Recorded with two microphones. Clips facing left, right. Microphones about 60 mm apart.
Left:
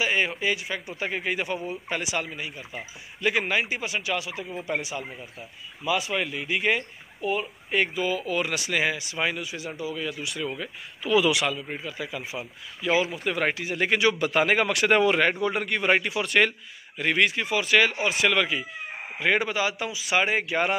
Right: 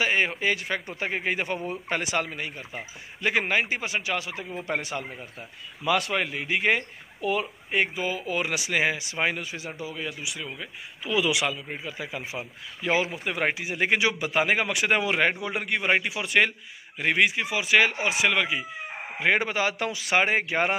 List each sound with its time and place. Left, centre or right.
0.0 s a man's voice: right
2.7 s a man's voice: right
4.6 s speech: right
6.2 s a man's voice: right
7.2 s speech: right
7.7 s speech: right
10.2 s speech: centre
11.8 s speech: right
18.1 s speech: centre
19.1 s a man's voice: right
19.8 s speech: right
20.2 s a man's voice: right